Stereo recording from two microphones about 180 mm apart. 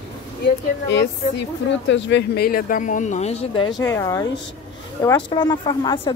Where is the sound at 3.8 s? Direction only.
20° left (ahead or behind).